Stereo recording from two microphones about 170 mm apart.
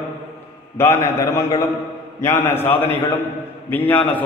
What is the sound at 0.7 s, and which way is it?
A man's voice, 15° left (ahead or behind).